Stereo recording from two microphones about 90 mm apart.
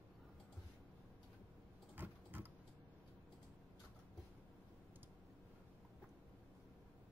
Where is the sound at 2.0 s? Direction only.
20° right (ahead or behind).